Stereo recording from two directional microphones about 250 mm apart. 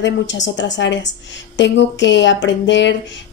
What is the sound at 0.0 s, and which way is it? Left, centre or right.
Speech, left.